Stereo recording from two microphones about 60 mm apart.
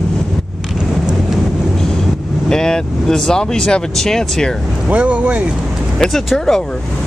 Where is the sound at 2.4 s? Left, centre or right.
Centre.